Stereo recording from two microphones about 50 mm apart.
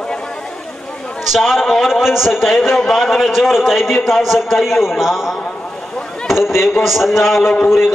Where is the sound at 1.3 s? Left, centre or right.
Centre.